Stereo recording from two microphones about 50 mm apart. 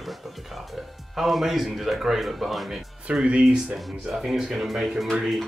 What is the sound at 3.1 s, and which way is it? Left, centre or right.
Speech, right.